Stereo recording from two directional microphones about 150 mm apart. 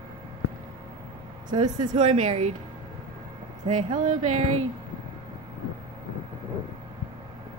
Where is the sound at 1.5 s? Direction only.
30° right (ahead or behind).